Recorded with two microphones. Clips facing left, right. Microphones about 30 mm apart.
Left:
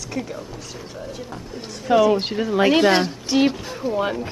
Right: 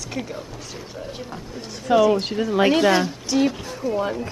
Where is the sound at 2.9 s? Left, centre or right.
Left.